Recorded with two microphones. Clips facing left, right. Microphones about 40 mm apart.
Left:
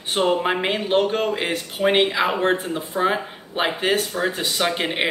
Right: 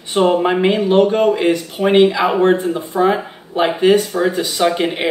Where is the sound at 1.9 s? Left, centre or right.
Left.